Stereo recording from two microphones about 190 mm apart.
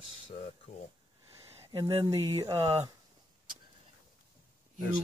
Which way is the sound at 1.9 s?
30° right (ahead or behind).